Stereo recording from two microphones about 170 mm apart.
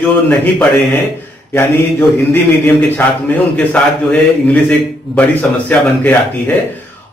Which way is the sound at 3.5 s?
5° left (ahead or behind).